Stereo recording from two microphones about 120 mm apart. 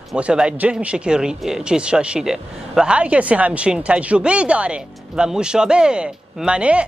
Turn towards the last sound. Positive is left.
turn(degrees=-10)  # may be behind; listen again after turning